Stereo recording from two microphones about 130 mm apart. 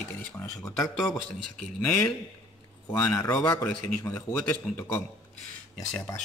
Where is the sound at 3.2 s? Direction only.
25° left (ahead or behind).